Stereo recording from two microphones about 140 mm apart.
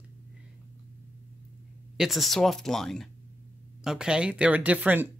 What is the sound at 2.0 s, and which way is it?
Speech, centre (ahead or behind).